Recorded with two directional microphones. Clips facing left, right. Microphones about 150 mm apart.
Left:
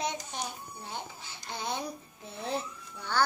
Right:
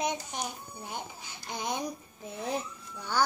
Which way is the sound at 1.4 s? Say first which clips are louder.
Right 2 dB; 15° right (ahead or behind).